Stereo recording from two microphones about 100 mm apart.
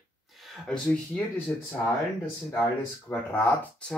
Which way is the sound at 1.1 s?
20° left (ahead or behind).